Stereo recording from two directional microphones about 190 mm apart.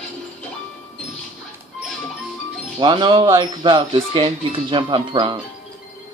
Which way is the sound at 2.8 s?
25° right (ahead or behind).